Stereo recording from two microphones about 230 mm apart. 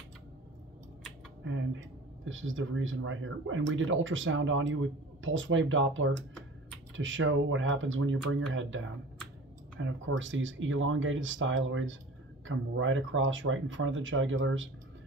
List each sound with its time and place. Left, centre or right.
2.2 s speech: right